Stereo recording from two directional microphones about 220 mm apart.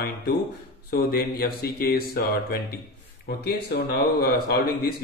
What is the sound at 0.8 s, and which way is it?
A man's voice, 45° left (ahead or behind).